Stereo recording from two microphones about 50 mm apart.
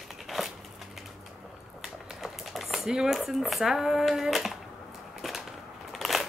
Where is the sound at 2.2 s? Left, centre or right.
Centre.